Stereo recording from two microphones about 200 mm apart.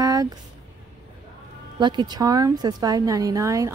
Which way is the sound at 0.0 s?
15° right (ahead or behind).